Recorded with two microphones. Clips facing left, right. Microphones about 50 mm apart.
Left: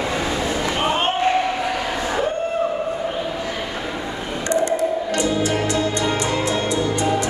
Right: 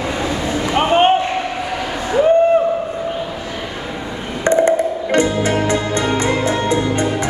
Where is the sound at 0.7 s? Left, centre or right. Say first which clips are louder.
Right 10 dB; right.